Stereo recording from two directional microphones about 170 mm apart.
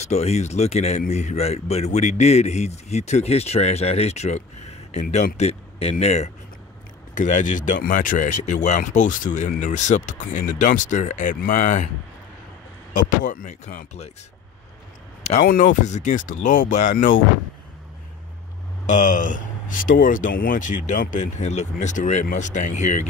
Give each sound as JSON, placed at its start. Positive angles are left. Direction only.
{"t": 0.0, "sound": "a man's voice", "side_deg": 40}
{"t": 12.9, "sound": "speech", "side_deg": 50}
{"t": 15.4, "sound": "speech", "side_deg": 50}
{"t": 18.9, "sound": "speech", "side_deg": 45}